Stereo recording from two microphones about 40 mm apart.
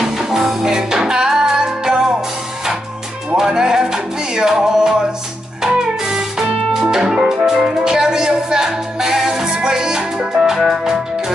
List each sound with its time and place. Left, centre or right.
0.2 s music: centre
3.3 s music: centre